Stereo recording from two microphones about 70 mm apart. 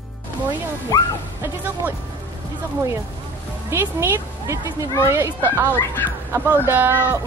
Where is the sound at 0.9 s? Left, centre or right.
Left.